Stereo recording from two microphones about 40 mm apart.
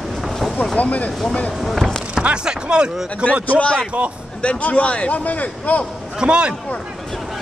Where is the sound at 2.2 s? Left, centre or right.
Right.